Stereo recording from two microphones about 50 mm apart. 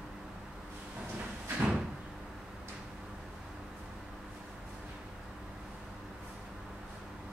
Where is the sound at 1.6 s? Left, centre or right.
Right.